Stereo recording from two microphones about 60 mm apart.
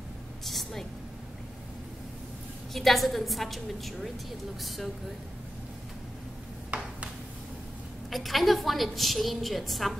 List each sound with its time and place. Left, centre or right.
0.5 s vehicle: centre
2.7 s a woman's voice: centre
6.7 s a sound: right
8.1 s a woman's voice: centre